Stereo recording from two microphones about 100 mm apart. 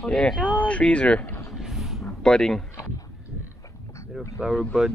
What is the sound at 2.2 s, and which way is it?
Speech, 5° left (ahead or behind).